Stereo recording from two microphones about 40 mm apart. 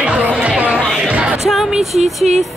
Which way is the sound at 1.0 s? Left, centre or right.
Right.